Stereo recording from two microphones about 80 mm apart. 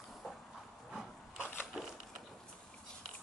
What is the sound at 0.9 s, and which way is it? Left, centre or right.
Wood, centre.